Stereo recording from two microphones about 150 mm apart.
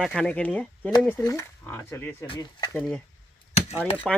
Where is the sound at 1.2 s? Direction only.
20° left (ahead or behind).